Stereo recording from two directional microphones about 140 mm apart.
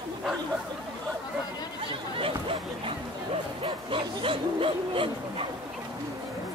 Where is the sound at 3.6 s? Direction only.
40° right (ahead or behind).